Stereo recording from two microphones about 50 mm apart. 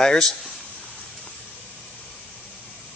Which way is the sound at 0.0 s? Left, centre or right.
Centre.